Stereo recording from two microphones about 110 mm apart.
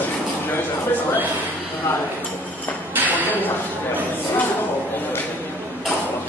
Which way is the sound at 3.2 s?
15° left (ahead or behind).